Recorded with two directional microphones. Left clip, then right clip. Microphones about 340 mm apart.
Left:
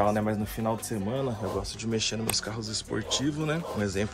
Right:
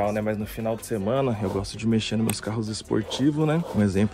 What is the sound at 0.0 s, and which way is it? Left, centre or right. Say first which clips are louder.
Speech: right 1 dB; centre.